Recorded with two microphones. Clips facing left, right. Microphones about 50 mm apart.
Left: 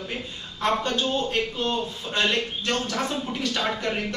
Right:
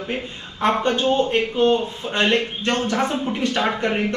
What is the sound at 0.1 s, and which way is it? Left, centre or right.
A man's voice, right.